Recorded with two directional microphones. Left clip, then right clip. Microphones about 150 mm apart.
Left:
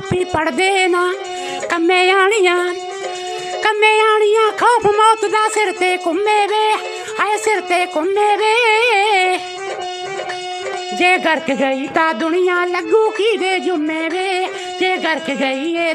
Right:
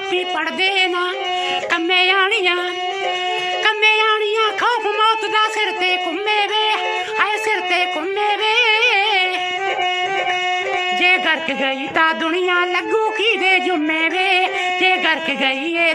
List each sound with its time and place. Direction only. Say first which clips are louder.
0.1 s music: left 4 dB; 50° left (ahead or behind)
3.6 s speech: left 3 dB; 50° left (ahead or behind)
11.0 s speech: left 3 dB; 45° left (ahead or behind)
14.2 s music: right 3 dB; 35° left (ahead or behind)